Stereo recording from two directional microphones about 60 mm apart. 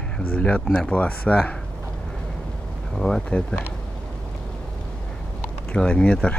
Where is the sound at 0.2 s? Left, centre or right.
Left.